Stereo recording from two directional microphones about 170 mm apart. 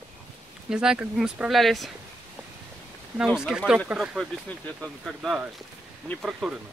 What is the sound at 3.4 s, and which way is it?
Speech, 5° right (ahead or behind).